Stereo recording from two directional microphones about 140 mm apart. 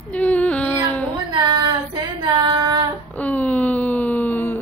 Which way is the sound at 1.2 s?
35° right (ahead or behind).